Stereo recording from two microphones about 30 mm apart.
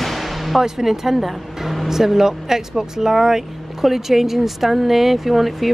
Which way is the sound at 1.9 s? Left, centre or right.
Centre.